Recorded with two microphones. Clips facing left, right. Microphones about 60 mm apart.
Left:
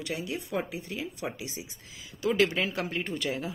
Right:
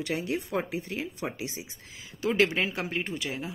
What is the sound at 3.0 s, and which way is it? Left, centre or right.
Speech, centre.